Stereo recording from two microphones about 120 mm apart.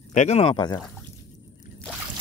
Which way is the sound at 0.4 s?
45° left (ahead or behind).